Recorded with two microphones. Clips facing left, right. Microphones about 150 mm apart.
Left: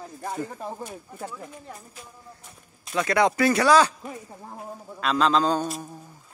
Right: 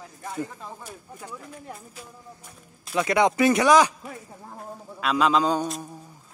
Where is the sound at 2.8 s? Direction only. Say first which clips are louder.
Right 1 dB; 5° right (ahead or behind).